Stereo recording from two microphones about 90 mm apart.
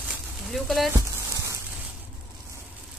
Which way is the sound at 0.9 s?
35° right (ahead or behind).